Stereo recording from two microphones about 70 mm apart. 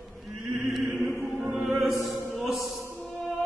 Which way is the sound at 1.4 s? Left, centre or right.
Right.